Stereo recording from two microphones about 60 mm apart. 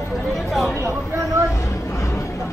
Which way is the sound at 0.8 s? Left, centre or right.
Right.